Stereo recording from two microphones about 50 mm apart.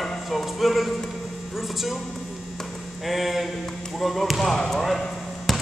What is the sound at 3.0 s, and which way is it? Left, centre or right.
Speech, centre.